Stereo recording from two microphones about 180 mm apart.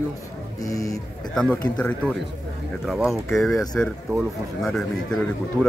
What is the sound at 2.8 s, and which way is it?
Speech, centre (ahead or behind).